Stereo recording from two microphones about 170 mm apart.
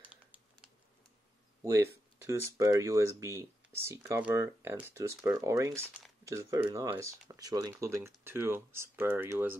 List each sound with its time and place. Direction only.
0.0 s crumpling: 5° right (ahead or behind)
1.6 s speech: 15° right (ahead or behind)